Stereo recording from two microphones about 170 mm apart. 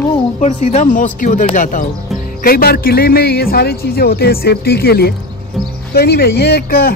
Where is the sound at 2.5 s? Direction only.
65° left (ahead or behind).